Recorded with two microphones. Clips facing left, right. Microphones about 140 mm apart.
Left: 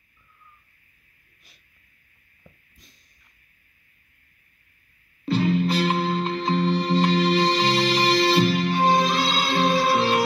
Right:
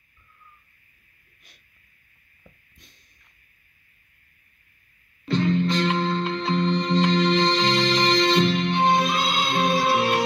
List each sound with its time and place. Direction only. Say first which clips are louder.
2.4 s a sound: even; centre (ahead or behind)
5.3 s music: even; 10° left (ahead or behind)
9.0 s music: left 1 dB; 35° left (ahead or behind)